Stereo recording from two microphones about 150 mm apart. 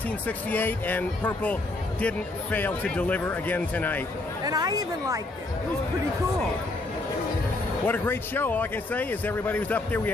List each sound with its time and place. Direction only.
0.5 s speech: 10° left (ahead or behind)
4.5 s a woman's voice: 25° right (ahead or behind)
7.8 s speech: 15° left (ahead or behind)